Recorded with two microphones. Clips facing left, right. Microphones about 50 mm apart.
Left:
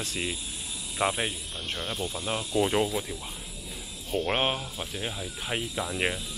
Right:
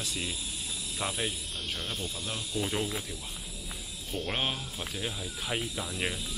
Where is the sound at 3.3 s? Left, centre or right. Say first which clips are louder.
Left 1 dB; centre.